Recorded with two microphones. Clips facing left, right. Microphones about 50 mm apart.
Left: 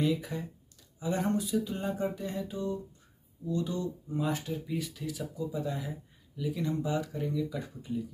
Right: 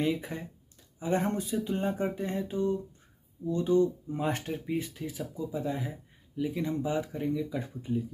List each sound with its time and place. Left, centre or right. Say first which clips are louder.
0.2 s speech: left 1 dB; right
4.3 s speech: right 3 dB; right
4.6 s speech: right 2 dB; right